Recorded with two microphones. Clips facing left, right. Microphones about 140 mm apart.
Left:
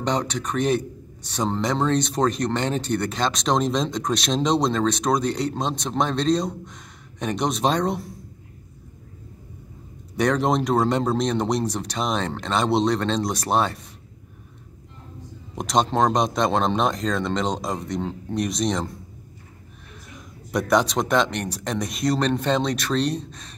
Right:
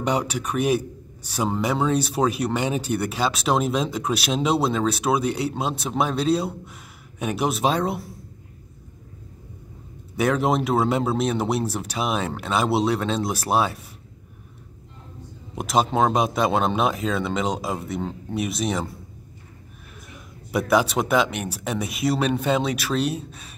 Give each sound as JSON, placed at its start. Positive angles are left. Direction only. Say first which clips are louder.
{"t": 0.0, "sound": "a man's voice", "louder": "right 1 dB", "side_deg": -10}
{"t": 10.1, "sound": "speech", "louder": "even", "side_deg": -5}
{"t": 15.5, "sound": "speech", "louder": "even", "side_deg": -5}
{"t": 20.1, "sound": "speech", "louder": "even", "side_deg": -5}